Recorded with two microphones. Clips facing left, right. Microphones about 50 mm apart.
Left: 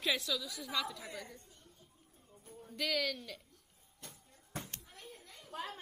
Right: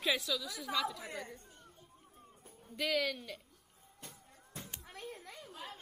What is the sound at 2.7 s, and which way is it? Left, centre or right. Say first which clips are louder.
Speech: right 2 dB; centre.